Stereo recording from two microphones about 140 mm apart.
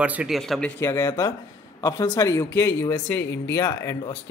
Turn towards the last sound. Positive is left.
turn(degrees=20)  # may be behind; listen again after turning